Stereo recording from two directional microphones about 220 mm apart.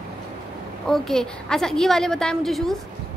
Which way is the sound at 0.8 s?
Centre (ahead or behind).